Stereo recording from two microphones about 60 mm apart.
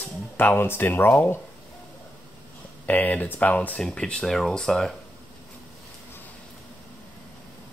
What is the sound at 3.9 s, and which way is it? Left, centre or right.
Speech, centre.